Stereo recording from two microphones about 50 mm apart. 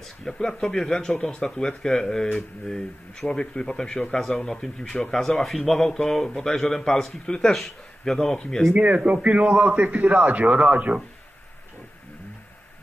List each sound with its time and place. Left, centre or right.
0.0 s speech: centre
8.7 s a man's voice: right